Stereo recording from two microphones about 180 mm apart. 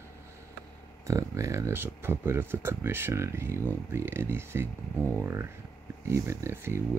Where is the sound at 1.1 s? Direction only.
20° right (ahead or behind).